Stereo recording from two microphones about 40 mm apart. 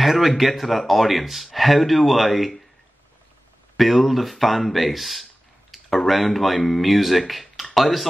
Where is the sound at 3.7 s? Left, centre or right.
Centre.